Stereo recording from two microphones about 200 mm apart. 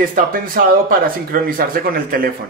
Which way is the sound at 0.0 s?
45° right (ahead or behind).